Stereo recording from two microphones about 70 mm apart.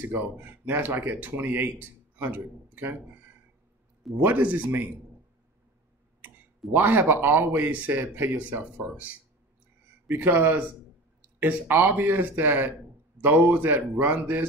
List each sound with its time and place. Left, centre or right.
0.0 s speech: right
4.2 s speech: right
6.7 s speech: right